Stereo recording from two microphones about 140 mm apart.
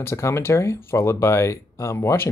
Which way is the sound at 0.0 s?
20° left (ahead or behind).